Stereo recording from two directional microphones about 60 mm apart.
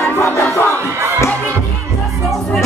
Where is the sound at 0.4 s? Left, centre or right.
Left.